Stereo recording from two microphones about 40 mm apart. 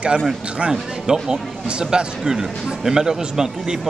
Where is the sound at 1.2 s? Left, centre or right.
Centre.